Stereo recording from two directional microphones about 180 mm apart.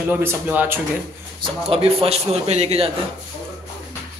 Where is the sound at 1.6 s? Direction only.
35° right (ahead or behind).